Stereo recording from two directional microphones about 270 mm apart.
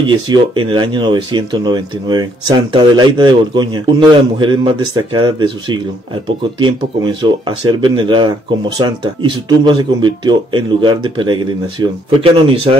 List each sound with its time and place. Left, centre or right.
0.3 s speech: centre